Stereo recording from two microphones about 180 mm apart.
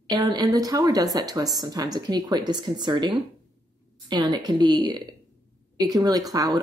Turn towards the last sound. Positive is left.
turn(degrees=-20)  # may be behind; listen again after turning